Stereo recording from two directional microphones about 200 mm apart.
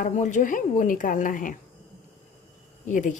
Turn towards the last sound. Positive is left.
turn(degrees=40)  # may be behind; listen again after turning